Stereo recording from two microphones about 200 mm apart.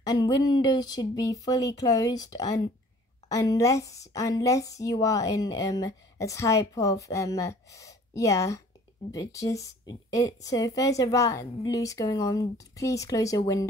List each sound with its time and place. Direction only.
0.0 s speech: 20° left (ahead or behind)